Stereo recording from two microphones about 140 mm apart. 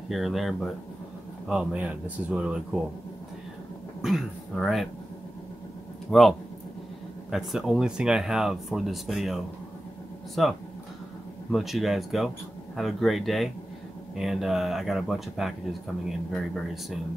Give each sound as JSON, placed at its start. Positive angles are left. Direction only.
{"t": 0.1, "sound": "speech", "side_deg": 0}
{"t": 4.0, "sound": "speech", "side_deg": 0}
{"t": 6.0, "sound": "speech", "side_deg": 0}